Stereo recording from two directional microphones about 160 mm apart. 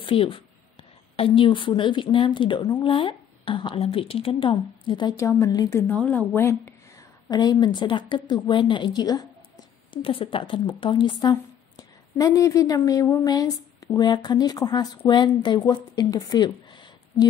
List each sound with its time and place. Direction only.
0.0 s a woman's voice: 35° left (ahead or behind)
5.9 s speech: 10° left (ahead or behind); by 16.5 s 25° left (ahead or behind)